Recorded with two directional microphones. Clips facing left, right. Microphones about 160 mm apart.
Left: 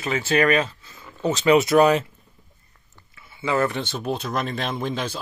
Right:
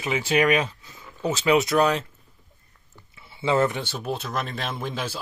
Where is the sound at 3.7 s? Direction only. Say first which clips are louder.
Left 3 dB; 10° right (ahead or behind).